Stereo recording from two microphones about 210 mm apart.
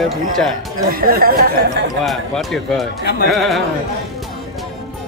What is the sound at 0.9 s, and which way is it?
Speech, 45° right (ahead or behind).